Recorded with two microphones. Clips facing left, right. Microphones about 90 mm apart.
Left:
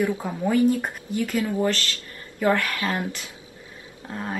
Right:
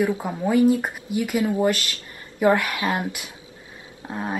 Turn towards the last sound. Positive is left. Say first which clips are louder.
# right 3 dB
turn(degrees=-20)  # may be behind; listen again after turning